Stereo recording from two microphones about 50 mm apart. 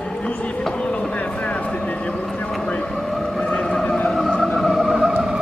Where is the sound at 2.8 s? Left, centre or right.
Centre.